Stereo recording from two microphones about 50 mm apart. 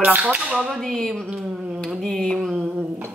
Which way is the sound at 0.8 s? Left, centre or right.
Centre.